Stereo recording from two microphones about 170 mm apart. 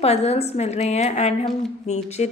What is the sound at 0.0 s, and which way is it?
A woman's voice, 40° left (ahead or behind).